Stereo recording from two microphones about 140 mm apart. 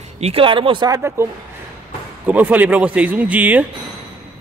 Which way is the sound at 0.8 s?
20° right (ahead or behind).